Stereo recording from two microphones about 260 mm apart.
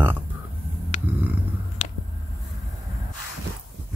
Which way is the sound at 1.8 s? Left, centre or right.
Left.